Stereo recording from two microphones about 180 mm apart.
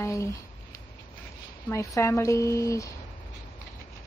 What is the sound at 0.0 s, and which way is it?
Speech, 15° left (ahead or behind).